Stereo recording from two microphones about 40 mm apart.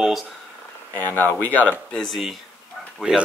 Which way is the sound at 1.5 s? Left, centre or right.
Left.